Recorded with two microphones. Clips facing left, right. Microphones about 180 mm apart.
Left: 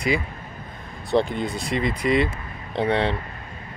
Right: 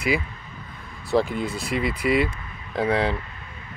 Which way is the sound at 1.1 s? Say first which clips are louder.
Left 1 dB; 5° right (ahead or behind).